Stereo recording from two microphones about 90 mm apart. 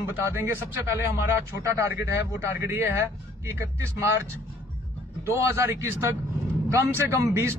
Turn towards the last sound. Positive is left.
turn(degrees=-30)  # may be behind; listen again after turning